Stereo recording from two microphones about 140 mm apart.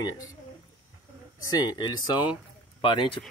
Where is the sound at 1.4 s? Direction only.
30° left (ahead or behind).